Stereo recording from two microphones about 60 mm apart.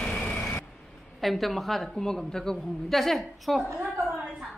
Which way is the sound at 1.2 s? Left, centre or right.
Centre.